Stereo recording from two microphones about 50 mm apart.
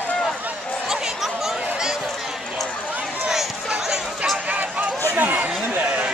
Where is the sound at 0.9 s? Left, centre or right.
Centre.